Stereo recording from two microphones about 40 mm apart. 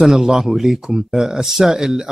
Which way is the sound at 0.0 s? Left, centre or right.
Centre.